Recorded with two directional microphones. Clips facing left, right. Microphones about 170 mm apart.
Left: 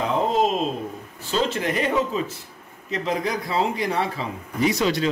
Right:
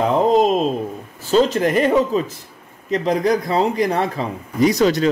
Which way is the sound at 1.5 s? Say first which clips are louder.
Right 7 dB; 40° right (ahead or behind).